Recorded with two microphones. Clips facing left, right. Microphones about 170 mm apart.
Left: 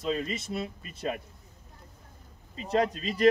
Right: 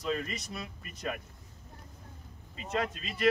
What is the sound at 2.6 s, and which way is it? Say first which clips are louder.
Speech: left 7 dB; 35° left (ahead or behind).